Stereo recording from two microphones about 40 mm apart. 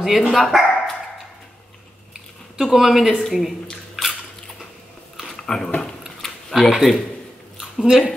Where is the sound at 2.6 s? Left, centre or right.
Centre.